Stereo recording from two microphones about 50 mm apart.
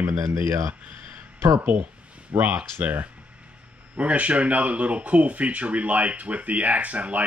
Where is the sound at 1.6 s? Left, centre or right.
Right.